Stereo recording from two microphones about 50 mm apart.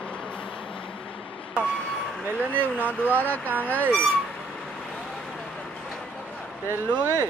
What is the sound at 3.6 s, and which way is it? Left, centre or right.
Speech, left.